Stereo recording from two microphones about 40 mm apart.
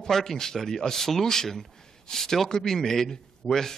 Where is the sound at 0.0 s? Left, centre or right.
Centre.